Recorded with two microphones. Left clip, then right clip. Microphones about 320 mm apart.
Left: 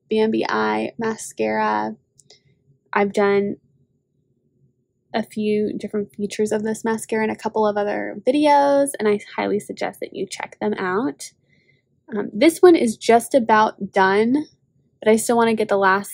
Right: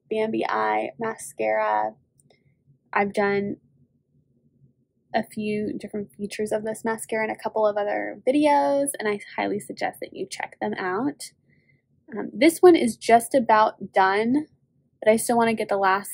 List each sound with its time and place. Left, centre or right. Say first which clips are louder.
0.1 s speech: left 5 dB; left
5.1 s speech: left 4 dB; left